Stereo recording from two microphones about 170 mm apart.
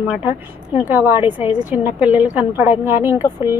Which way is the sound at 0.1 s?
10° right (ahead or behind).